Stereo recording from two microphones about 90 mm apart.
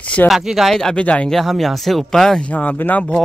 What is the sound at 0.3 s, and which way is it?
Speech, 5° right (ahead or behind).